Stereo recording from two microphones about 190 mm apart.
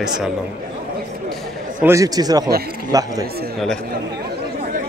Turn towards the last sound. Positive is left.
turn(degrees=-20)  # may be behind; listen again after turning